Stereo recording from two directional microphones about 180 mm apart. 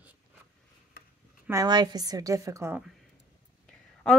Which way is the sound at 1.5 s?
20° right (ahead or behind).